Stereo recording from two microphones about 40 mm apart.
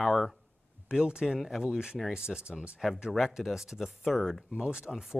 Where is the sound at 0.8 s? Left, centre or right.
Centre.